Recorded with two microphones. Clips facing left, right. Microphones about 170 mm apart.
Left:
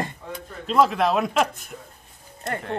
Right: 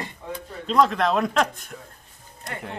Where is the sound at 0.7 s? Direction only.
5° left (ahead or behind).